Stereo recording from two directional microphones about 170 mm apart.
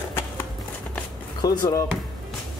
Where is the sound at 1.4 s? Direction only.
20° left (ahead or behind).